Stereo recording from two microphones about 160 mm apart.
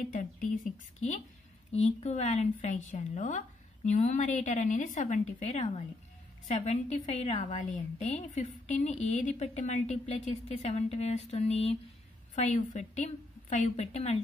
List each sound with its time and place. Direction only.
0.1 s a woman's voice: 50° left (ahead or behind)
1.7 s a woman's voice: 40° left (ahead or behind)